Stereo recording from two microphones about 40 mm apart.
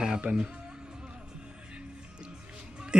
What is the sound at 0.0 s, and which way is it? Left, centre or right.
Music, centre.